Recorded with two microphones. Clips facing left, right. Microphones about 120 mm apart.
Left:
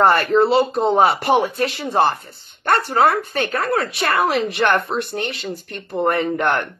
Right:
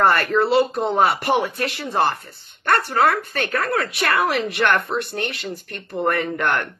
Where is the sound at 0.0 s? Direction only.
25° left (ahead or behind).